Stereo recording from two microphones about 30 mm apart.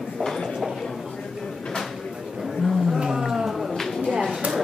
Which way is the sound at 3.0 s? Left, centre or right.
Centre.